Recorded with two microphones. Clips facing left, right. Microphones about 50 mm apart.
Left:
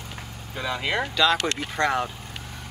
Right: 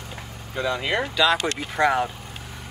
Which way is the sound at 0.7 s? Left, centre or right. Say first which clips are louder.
Right 1 dB; centre.